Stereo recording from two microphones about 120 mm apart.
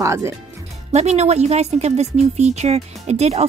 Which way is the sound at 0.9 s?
65° right (ahead or behind).